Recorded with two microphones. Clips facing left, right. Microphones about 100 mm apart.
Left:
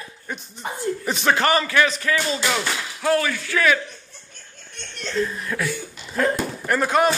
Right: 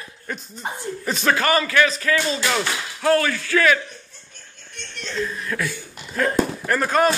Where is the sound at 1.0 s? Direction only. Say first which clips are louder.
Even; 15° left (ahead or behind).